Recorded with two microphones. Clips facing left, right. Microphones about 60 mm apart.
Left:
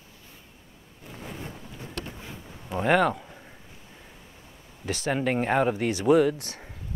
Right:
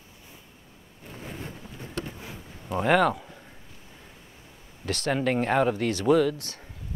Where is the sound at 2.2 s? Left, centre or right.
Centre.